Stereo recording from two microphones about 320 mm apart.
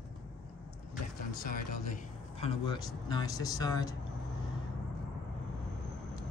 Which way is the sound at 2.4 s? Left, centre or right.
Centre.